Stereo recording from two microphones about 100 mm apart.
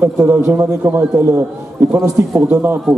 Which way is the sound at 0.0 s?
25° right (ahead or behind).